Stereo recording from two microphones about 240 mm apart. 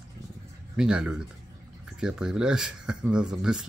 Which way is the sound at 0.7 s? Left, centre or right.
Centre.